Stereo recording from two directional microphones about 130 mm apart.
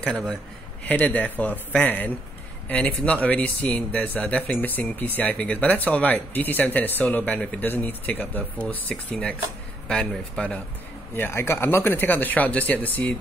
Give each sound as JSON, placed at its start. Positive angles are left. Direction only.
{"t": 0.0, "sound": "speech", "side_deg": 5}
{"t": 11.1, "sound": "speech", "side_deg": 15}